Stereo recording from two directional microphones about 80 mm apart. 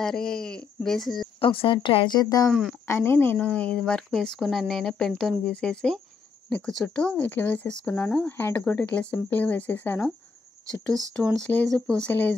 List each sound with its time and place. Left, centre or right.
0.0 s speech: centre
1.4 s speech: left
2.9 s speech: left
3.3 s speech: centre
7.2 s speech: left
10.7 s speech: right
11.4 s speech: centre
12.1 s speech: left